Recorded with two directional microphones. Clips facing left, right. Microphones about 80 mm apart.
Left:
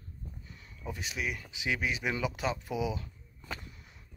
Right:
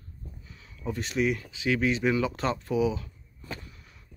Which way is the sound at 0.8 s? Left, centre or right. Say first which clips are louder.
Right 9 dB; centre.